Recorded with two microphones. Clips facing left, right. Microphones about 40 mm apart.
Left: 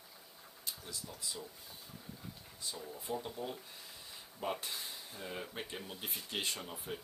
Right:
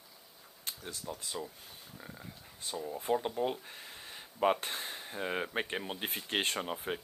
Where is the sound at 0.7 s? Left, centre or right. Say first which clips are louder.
Right 5 dB; right.